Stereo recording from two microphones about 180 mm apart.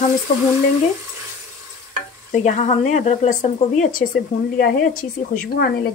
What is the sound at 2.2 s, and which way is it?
Speech, 40° left (ahead or behind).